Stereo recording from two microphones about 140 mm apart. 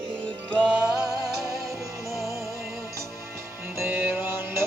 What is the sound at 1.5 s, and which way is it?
Music, centre (ahead or behind).